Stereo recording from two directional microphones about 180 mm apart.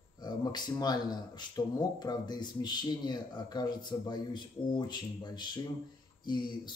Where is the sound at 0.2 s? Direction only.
25° left (ahead or behind).